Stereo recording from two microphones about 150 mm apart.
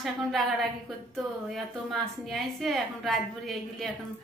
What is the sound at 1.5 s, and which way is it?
A woman's voice, centre (ahead or behind).